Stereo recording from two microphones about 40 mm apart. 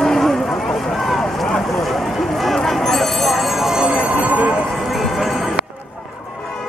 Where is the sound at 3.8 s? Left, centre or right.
Right.